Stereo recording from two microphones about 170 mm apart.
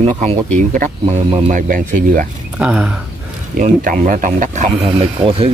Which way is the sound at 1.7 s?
50° right (ahead or behind).